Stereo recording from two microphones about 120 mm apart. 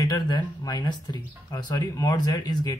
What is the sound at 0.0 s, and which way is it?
Speech, 35° left (ahead or behind).